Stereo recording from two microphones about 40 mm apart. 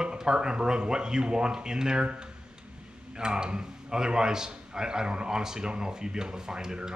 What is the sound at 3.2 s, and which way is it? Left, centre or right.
Speech, centre.